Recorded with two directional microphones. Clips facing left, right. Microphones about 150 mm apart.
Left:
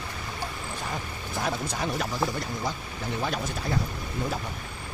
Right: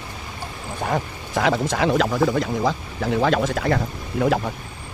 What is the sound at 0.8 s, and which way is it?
Speech, 80° right.